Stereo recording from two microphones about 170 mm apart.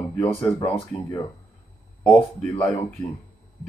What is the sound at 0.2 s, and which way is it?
Speech, 30° left (ahead or behind).